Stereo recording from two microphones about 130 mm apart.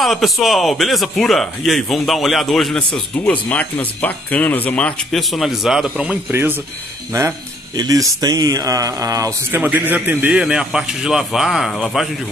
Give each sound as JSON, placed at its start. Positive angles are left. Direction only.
{"t": 0.0, "sound": "a man's voice", "side_deg": 0}
{"t": 9.6, "sound": "a man's voice", "side_deg": -15}